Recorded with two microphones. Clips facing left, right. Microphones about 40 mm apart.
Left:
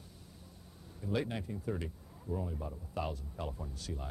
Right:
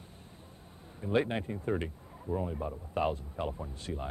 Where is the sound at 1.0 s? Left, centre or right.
Right.